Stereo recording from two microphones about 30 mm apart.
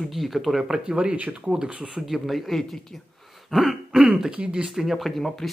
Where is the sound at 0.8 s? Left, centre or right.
Right.